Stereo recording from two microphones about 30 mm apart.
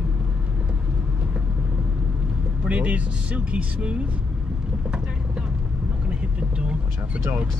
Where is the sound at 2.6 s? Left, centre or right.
Right.